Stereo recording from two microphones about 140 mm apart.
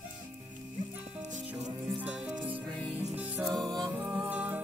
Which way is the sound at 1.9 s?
5° right (ahead or behind).